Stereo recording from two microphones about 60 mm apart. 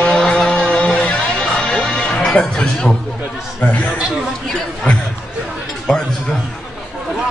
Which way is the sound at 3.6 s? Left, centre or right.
Left.